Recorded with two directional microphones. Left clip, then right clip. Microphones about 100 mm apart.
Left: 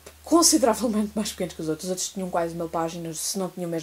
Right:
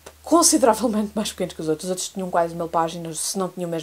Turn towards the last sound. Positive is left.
turn(degrees=-30)  # may be behind; listen again after turning